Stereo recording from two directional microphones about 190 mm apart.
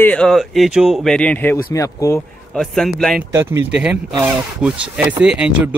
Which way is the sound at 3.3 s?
10° right (ahead or behind).